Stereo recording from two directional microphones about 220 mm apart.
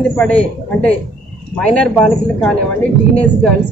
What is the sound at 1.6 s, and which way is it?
A man's voice, 5° left (ahead or behind).